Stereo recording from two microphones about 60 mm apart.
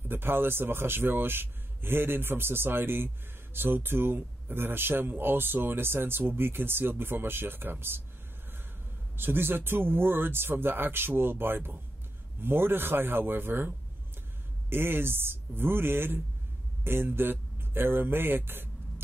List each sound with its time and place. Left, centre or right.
0.1 s speech: right
9.1 s speech: right